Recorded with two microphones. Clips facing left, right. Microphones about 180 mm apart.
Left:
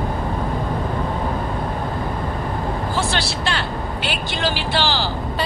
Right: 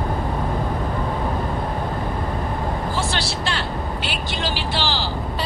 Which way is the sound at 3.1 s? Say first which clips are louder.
Left 2 dB; 60° left (ahead or behind).